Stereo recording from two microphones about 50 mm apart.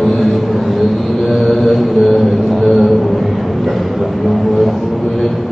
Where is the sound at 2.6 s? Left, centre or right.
Centre.